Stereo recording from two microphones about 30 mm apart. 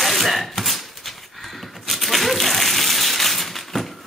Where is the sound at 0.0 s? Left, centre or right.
Centre.